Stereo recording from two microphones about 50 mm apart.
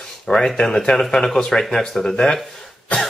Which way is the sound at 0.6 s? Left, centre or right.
Centre.